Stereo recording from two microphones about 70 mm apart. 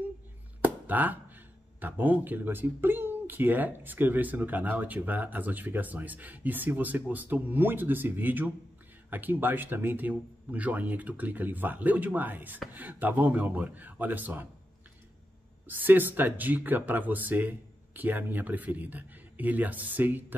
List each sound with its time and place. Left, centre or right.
0.8 s speech: right
15.6 s speech: right